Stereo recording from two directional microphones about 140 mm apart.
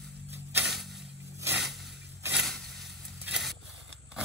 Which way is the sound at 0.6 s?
Centre (ahead or behind).